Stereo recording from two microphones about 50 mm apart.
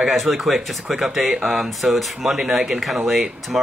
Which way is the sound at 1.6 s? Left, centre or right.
Centre.